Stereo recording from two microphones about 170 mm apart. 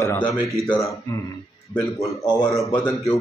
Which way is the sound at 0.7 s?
Centre (ahead or behind).